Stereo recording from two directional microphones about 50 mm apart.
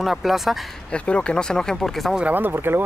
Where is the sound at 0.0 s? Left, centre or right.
Centre.